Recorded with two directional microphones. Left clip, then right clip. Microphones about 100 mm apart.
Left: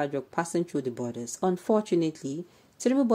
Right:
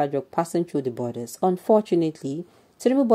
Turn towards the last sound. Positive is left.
turn(degrees=-25)  # may be behind; listen again after turning